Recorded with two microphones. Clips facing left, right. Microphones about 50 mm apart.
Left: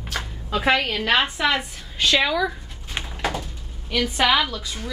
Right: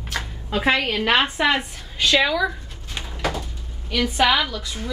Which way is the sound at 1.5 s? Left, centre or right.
Centre.